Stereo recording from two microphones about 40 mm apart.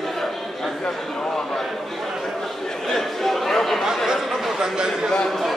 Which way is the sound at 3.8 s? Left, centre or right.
Centre.